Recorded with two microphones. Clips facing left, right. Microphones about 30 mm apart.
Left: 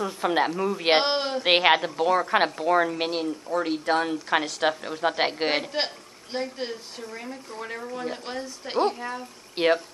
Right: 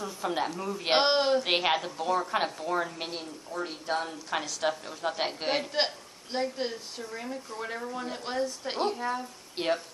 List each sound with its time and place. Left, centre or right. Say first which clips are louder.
0.0 s a woman's voice: left 7 dB; left
1.0 s a woman's voice: right 1 dB; centre
1.4 s a woman's voice: left 7 dB; left
6.3 s a woman's voice: even; centre
7.0 s speech: left 1 dB; centre
7.5 s a woman's voice: left 3 dB; centre
9.6 s speech: left 8 dB; left